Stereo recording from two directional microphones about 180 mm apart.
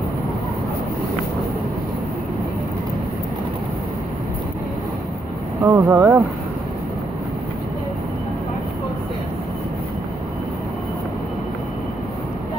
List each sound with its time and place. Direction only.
5.7 s speech: 20° right (ahead or behind)